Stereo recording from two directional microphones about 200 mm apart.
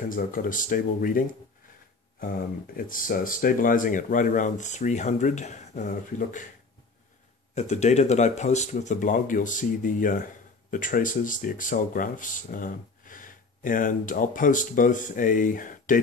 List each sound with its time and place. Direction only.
0.1 s speech: 45° left (ahead or behind)
2.9 s speech: 45° left (ahead or behind)
7.5 s speech: 35° left (ahead or behind)